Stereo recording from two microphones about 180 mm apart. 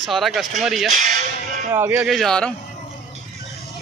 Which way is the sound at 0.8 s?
45° right (ahead or behind).